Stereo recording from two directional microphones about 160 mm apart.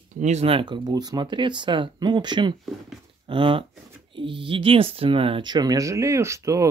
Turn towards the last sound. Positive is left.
turn(degrees=-20)  # may be behind; listen again after turning